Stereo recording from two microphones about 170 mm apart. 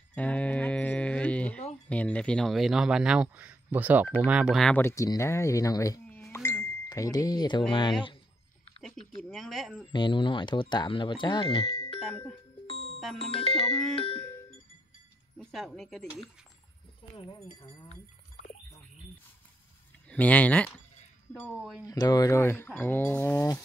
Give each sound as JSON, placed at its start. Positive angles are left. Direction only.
{"t": 0.1, "sound": "livestock", "side_deg": 10}
{"t": 1.9, "sound": "speech", "side_deg": 5}
{"t": 6.0, "sound": "a sound", "side_deg": 10}
{"t": 6.9, "sound": "speech", "side_deg": 20}
{"t": 8.8, "sound": "speech", "side_deg": 0}
{"t": 9.9, "sound": "speech", "side_deg": 30}
{"t": 13.2, "sound": "music", "side_deg": 35}
{"t": 15.3, "sound": "speech", "side_deg": 0}
{"t": 17.6, "sound": "music", "side_deg": 30}
{"t": 20.1, "sound": "speech", "side_deg": 10}
{"t": 21.8, "sound": "speech", "side_deg": 20}